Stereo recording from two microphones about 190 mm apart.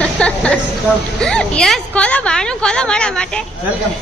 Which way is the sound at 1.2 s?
5° left (ahead or behind).